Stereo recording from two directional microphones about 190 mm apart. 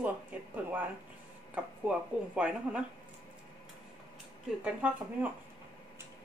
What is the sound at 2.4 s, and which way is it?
Speech, 5° right (ahead or behind).